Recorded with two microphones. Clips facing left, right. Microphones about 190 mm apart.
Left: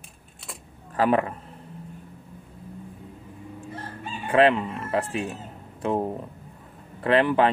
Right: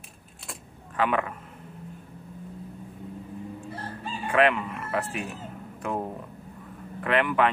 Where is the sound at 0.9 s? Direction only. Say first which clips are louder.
Left 4 dB; 35° left (ahead or behind).